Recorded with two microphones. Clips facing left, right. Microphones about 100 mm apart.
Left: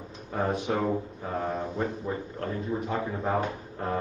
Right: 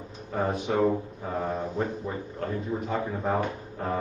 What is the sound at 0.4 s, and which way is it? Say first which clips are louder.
A man's voice: right 2 dB; centre (ahead or behind).